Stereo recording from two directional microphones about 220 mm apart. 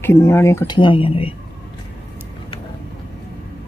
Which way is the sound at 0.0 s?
10° left (ahead or behind).